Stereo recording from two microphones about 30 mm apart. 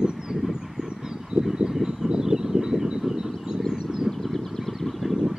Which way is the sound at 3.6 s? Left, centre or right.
Right.